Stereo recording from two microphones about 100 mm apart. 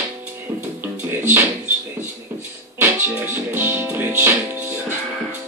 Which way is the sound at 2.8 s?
20° right (ahead or behind).